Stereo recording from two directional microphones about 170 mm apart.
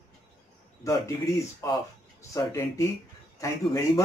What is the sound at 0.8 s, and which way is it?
A man's voice, 20° left (ahead or behind).